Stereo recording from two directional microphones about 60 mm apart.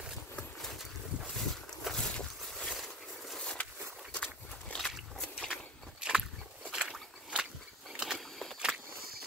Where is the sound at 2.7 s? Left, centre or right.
Centre.